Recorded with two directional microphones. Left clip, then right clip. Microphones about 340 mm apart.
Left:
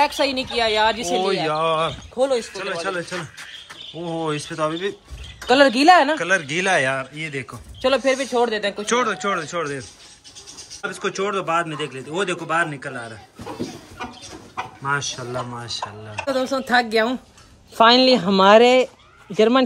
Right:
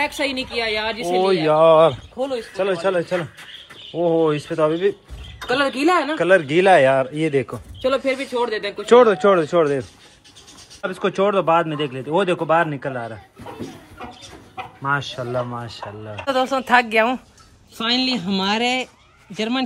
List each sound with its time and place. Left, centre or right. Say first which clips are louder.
0.0 s a woman's voice: left 3 dB; centre
1.0 s speech: right 3 dB; centre
2.1 s speech: left 5 dB; left
2.5 s speech: right 6 dB; centre
5.5 s a woman's voice: left 5 dB; left
6.1 s speech: right 5 dB; centre
7.8 s a woman's voice: left 2 dB; centre
8.8 s speech: right 11 dB; centre
14.8 s speech: right 2 dB; centre